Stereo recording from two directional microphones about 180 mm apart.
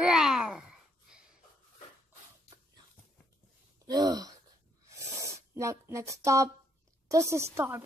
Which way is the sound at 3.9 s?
20° right (ahead or behind).